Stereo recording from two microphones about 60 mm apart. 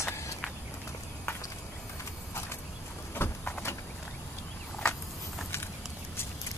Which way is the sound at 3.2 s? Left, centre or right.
Left.